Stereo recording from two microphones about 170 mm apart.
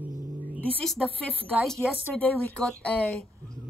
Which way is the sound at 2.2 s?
10° left (ahead or behind).